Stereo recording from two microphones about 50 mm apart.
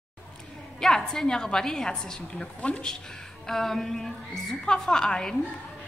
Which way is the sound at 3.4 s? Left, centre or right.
Centre.